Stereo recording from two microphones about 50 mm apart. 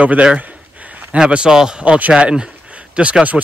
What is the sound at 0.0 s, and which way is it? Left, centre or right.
Speech, right.